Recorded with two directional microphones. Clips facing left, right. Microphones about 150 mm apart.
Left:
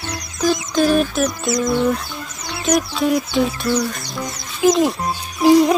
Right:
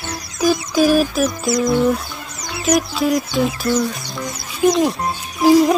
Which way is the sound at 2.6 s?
5° right (ahead or behind).